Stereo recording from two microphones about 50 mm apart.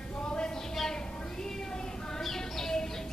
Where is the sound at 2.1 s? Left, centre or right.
Centre.